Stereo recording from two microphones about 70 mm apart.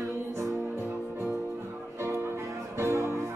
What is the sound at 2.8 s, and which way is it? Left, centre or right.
Music, right.